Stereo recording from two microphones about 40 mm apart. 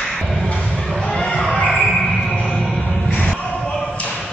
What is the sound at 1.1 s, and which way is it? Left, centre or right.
Music, centre.